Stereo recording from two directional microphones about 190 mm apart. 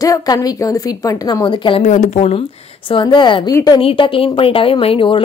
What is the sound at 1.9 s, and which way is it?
Speech, 35° left (ahead or behind).